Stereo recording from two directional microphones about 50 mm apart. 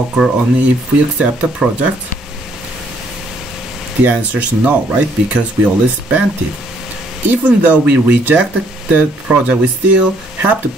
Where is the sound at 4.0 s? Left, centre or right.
Right.